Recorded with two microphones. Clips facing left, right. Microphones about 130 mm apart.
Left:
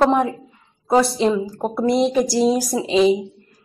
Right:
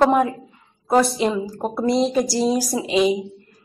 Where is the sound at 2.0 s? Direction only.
20° left (ahead or behind).